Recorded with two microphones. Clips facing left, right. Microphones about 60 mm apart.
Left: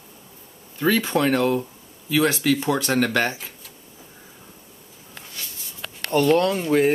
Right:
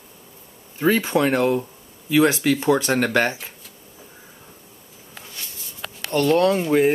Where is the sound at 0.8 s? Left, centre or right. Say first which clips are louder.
Right 1 dB; centre.